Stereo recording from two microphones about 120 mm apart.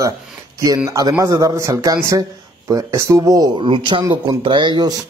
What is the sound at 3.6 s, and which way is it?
Speech, 45° right (ahead or behind).